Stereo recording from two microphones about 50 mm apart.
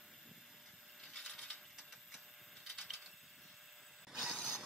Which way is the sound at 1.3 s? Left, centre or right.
Centre.